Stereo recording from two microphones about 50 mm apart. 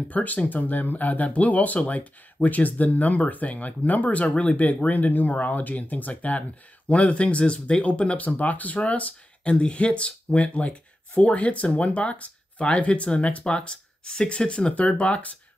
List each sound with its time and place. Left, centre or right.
0.1 s speech: left